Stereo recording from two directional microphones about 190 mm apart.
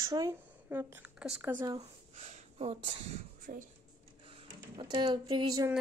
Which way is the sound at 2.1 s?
40° right (ahead or behind).